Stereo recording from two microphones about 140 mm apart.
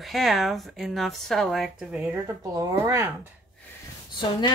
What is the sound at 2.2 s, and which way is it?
Speech, 25° right (ahead or behind).